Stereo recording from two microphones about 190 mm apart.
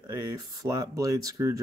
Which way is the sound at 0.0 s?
20° right (ahead or behind).